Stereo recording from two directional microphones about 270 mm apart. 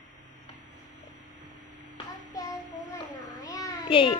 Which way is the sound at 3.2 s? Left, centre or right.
Centre.